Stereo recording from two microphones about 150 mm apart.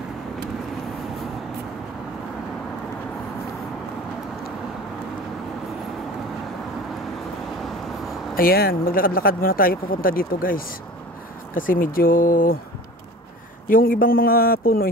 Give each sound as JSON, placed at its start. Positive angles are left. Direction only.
{"t": 8.4, "sound": "speech", "side_deg": 80}
{"t": 13.7, "sound": "speech", "side_deg": 70}